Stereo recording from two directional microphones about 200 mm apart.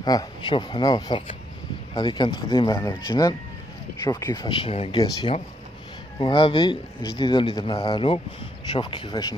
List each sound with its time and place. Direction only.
0.0 s speech: 20° left (ahead or behind)